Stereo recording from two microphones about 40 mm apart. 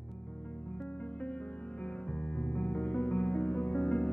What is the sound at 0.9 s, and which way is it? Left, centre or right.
Music, left.